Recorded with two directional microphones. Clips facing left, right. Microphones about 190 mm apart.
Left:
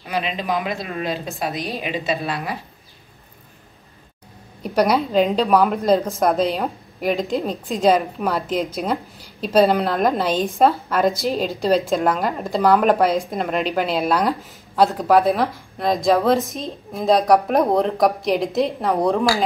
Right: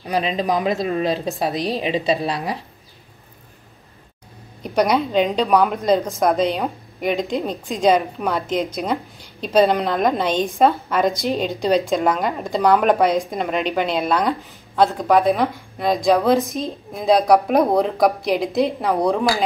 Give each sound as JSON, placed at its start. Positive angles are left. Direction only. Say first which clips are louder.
{"t": 0.0, "sound": "speech", "louder": "right 4 dB", "side_deg": -35}
{"t": 4.6, "sound": "a woman's voice", "louder": "even", "side_deg": 5}